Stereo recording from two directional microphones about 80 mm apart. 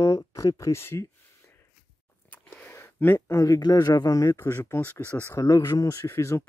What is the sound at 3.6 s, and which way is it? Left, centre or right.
Speech, left.